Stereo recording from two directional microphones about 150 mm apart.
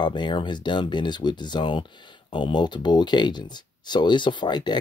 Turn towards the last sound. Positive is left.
turn(degrees=30)  # may be behind; listen again after turning